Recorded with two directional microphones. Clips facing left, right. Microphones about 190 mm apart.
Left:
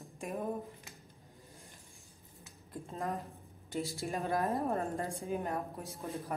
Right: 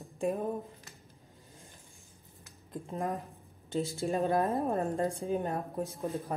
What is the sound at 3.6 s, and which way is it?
Speech, 30° right (ahead or behind).